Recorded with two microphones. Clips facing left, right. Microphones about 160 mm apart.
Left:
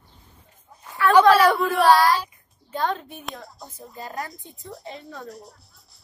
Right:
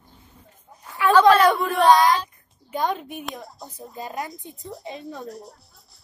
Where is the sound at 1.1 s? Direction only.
10° left (ahead or behind).